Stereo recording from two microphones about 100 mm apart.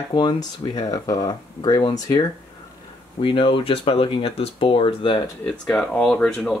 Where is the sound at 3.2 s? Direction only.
60° left (ahead or behind).